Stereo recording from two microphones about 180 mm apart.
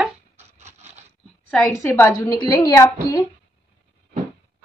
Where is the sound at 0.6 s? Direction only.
40° right (ahead or behind).